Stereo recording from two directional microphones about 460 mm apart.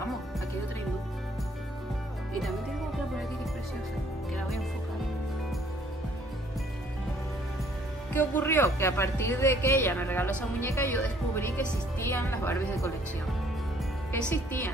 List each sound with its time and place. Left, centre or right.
8.1 s speech: centre
14.3 s speech: centre